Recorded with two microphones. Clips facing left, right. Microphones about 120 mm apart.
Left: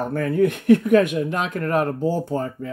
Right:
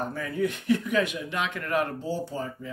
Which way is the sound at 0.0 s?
55° left (ahead or behind).